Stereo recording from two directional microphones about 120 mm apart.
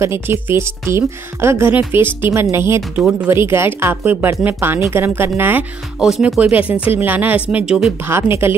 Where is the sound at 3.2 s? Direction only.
20° right (ahead or behind).